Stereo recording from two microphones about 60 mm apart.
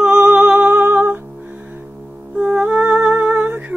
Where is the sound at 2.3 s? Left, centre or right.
Centre.